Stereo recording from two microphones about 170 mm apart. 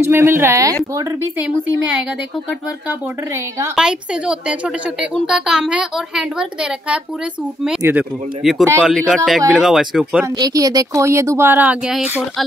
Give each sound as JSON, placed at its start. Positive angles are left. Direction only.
{"t": 0.0, "sound": "speech", "side_deg": -15}
{"t": 3.7, "sound": "speech", "side_deg": -5}
{"t": 10.2, "sound": "speech", "side_deg": -20}